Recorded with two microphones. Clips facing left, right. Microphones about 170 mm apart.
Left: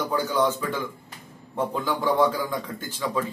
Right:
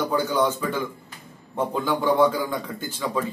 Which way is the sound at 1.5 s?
Centre (ahead or behind).